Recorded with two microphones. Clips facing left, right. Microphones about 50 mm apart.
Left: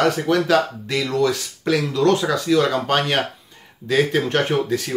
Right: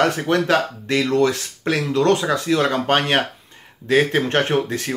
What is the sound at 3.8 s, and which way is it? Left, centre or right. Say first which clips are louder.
Speech: right 1 dB; right.